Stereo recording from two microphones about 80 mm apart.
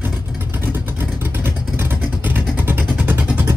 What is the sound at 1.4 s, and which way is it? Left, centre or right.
Vehicle, right.